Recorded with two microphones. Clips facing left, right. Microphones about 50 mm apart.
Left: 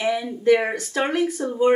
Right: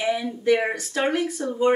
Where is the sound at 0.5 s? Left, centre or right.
Centre.